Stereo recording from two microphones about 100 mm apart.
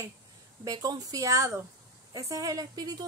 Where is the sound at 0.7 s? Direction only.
40° right (ahead or behind).